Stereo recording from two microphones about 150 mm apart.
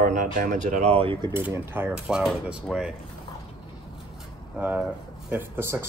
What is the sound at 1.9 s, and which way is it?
Speech, 5° right (ahead or behind).